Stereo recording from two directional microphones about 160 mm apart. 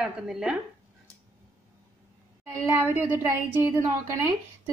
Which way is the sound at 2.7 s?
15° right (ahead or behind).